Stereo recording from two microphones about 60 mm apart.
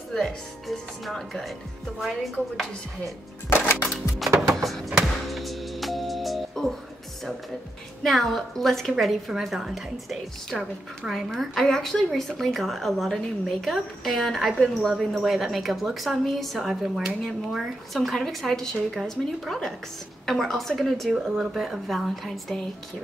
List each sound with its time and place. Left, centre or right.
0.1 s a woman's voice: centre
3.4 s music: left
4.6 s music: centre
8.0 s a woman's voice: centre